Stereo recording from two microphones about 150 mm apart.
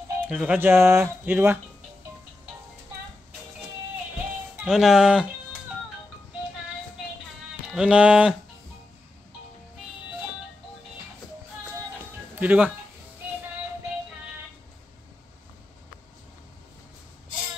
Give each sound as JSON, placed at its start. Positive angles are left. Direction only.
{"t": 0.3, "sound": "speech", "side_deg": -10}
{"t": 4.6, "sound": "speech", "side_deg": 0}
{"t": 7.7, "sound": "speech", "side_deg": -5}
{"t": 12.4, "sound": "speech", "side_deg": -10}